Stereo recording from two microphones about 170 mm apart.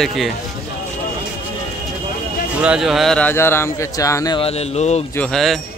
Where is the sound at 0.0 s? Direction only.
Centre (ahead or behind).